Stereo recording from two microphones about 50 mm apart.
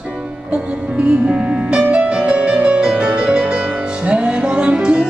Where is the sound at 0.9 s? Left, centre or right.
Right.